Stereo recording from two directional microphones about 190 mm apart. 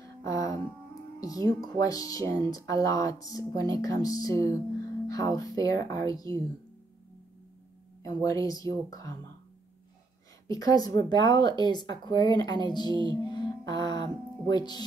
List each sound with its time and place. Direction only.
0.0 s music: 15° left (ahead or behind)
1.2 s speech: 20° left (ahead or behind)
8.0 s speech: 15° left (ahead or behind)
10.5 s speech: 20° left (ahead or behind)
13.1 s music: 20° left (ahead or behind)